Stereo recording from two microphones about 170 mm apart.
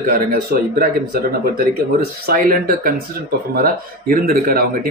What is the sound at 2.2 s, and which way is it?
Speech, 55° right (ahead or behind).